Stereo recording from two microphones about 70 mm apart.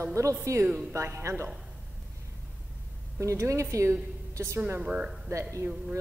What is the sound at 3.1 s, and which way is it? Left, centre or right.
A woman's voice, right.